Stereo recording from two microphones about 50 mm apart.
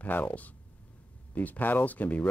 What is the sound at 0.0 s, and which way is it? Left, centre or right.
Speech, left.